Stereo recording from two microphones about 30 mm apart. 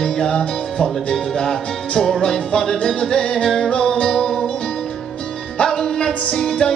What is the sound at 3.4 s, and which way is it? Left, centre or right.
Music, centre.